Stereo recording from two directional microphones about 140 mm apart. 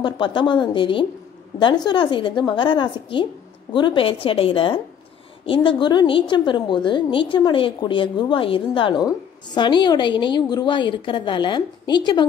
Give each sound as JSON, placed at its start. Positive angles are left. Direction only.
{"t": 0.0, "sound": "a woman's voice", "side_deg": 35}